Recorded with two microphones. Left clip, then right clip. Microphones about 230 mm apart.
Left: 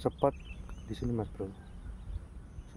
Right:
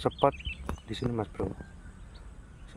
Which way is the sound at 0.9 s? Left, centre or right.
Centre.